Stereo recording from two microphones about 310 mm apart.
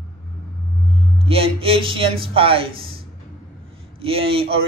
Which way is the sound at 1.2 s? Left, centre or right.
Centre.